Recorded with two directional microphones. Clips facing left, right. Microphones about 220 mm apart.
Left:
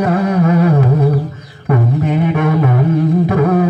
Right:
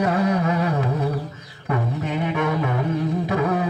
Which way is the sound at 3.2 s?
55° left (ahead or behind).